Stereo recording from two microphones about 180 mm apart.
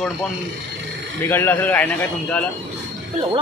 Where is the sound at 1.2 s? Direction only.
10° left (ahead or behind).